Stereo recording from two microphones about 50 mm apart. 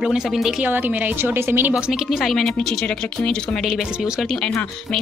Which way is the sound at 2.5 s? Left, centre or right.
Centre.